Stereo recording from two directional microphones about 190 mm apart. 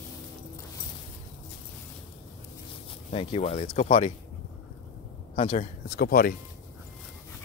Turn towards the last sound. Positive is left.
turn(degrees=50)  # may be behind; listen again after turning